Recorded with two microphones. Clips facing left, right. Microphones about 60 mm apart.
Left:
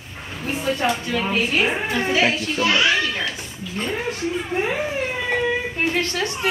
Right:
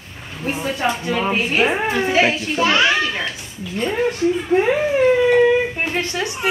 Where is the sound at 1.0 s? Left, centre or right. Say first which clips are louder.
Right 2 dB; right.